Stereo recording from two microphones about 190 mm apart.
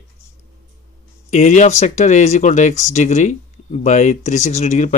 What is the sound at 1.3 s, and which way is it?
Speech, 40° left (ahead or behind).